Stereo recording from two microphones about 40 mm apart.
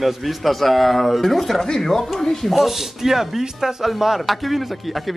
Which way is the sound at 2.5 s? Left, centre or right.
Centre.